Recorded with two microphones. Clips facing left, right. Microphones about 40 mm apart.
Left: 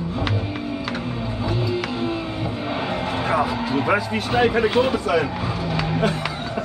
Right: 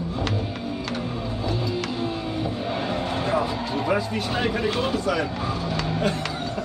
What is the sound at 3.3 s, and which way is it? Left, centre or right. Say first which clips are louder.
Music: left 5 dB; left.